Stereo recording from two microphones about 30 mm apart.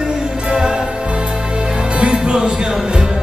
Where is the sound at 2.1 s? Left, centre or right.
Right.